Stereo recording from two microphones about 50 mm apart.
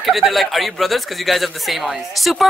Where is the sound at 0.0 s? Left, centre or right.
Centre.